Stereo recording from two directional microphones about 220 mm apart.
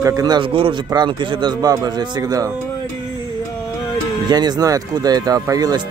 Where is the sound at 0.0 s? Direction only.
15° right (ahead or behind).